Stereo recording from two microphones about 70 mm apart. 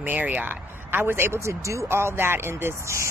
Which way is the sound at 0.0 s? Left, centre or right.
Right.